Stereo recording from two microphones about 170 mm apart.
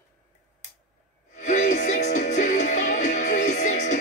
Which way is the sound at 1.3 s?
45° left (ahead or behind).